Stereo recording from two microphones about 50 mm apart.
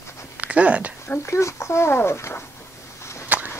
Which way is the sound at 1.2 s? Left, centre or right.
Left.